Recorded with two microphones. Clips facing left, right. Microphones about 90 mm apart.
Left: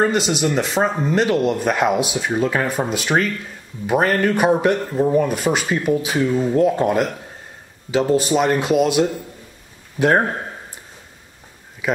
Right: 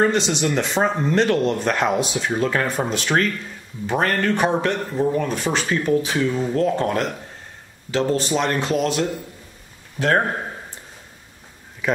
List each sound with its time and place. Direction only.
0.0 s a man's voice: 5° left (ahead or behind)
11.8 s speech: 5° left (ahead or behind)